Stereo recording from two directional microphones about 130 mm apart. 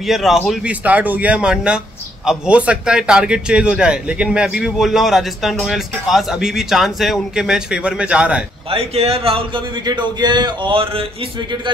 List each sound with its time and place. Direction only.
0.0 s a man's voice: centre (ahead or behind)
8.6 s a man's voice: 50° right (ahead or behind)
9.8 s speech: 35° right (ahead or behind)